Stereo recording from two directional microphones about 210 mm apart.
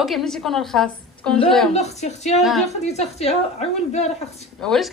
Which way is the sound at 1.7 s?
30° left (ahead or behind).